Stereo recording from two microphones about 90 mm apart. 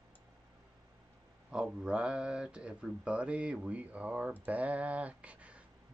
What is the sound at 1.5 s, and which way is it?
Speech, 10° right (ahead or behind).